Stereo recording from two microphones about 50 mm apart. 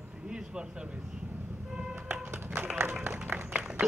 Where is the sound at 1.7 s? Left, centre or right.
Centre.